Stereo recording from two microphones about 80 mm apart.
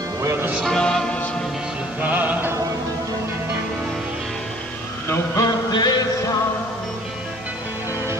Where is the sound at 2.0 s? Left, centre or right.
Centre.